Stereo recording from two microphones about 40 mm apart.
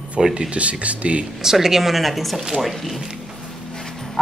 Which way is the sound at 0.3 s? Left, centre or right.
Right.